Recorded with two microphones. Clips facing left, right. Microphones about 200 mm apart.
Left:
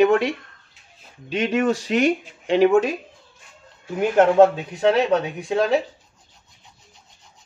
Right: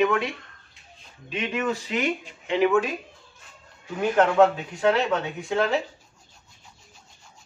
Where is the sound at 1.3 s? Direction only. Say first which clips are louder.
Left 7 dB; 80° left.